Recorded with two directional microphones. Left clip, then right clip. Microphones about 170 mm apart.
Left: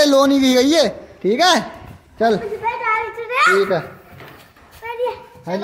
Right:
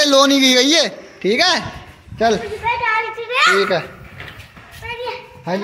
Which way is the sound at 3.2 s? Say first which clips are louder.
Even; 45° left (ahead or behind).